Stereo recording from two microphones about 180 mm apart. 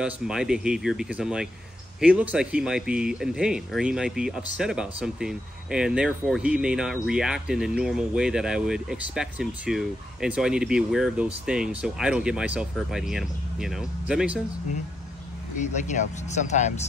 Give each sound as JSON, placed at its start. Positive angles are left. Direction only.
{"t": 0.0, "sound": "speech", "side_deg": -5}
{"t": 15.6, "sound": "speech", "side_deg": 40}